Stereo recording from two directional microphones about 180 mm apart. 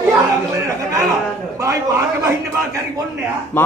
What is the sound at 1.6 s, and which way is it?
Speech, 15° right (ahead or behind).